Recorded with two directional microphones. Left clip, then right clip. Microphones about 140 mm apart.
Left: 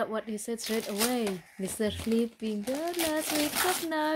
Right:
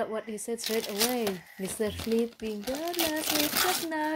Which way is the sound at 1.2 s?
30° right (ahead or behind).